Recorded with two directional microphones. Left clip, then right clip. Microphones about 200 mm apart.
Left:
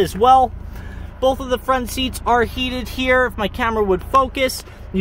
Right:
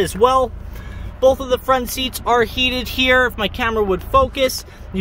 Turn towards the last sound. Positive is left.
turn(degrees=10)  # may be behind; listen again after turning